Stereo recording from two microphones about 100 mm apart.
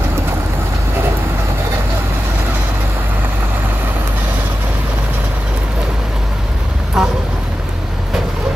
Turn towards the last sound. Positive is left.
turn(degrees=-5)  # may be behind; listen again after turning